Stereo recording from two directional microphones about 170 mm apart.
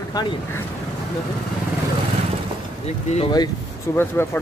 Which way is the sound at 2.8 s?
40° left (ahead or behind).